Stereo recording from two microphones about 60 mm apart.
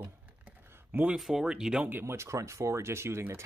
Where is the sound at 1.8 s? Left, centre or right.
Right.